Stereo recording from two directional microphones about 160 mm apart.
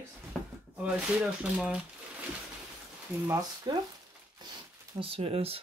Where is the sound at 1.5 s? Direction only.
5° right (ahead or behind).